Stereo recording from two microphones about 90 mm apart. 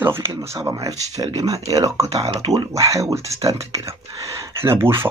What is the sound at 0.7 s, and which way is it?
Speech, 40° right (ahead or behind).